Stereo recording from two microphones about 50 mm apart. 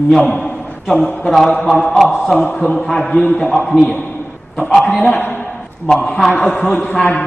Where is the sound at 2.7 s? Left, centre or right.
Centre.